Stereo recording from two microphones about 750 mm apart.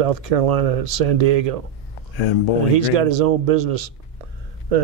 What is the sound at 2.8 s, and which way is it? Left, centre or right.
Speech, right.